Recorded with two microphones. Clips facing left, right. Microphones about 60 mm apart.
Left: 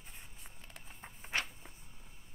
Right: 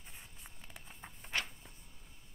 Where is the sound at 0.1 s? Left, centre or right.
Centre.